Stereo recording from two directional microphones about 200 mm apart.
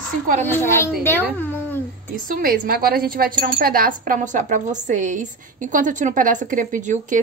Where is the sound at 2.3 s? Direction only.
45° right (ahead or behind).